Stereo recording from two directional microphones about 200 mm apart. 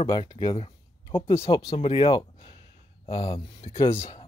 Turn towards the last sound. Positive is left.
turn(degrees=15)  # may be behind; listen again after turning